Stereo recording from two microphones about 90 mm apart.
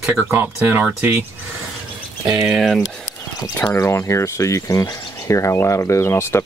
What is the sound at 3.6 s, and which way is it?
Speech, 30° left (ahead or behind).